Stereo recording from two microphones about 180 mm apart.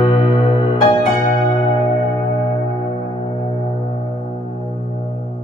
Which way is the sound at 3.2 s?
30° left (ahead or behind).